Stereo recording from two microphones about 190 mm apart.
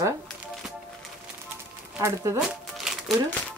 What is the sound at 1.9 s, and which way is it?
Speech, 15° right (ahead or behind).